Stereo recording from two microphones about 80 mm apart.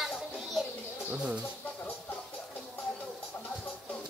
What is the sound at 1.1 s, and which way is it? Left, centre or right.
Speech, centre.